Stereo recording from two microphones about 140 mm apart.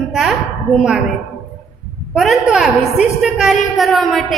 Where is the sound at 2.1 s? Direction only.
Centre (ahead or behind).